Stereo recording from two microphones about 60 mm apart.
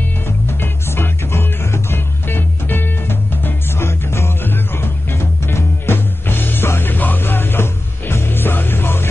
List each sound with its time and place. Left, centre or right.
0.5 s music: left